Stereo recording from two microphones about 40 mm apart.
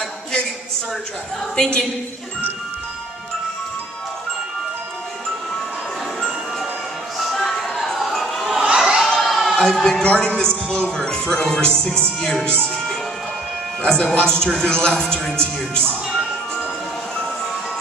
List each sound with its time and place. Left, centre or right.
1.6 s speech: centre
7.2 s music: centre
8.7 s a sound: centre
9.0 s a sound: centre
9.8 s speech: left
12.2 s speech: centre
13.8 s speech: centre